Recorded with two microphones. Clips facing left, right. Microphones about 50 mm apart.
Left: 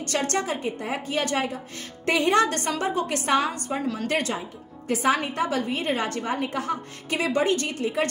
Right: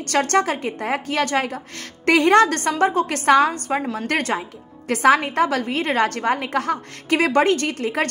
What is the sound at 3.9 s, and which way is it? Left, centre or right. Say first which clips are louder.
Speech: right 3 dB; right.